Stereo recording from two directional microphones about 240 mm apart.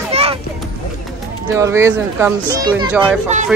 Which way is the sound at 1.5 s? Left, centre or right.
Centre.